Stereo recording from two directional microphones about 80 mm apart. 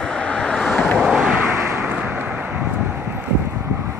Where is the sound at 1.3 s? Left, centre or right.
Right.